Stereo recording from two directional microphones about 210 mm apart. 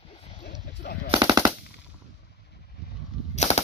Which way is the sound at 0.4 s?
50° left (ahead or behind).